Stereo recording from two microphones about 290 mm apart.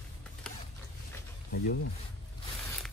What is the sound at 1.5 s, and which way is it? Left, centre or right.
Speech, left.